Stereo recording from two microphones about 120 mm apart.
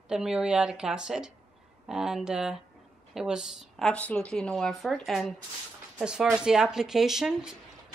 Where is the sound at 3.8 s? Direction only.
10° left (ahead or behind).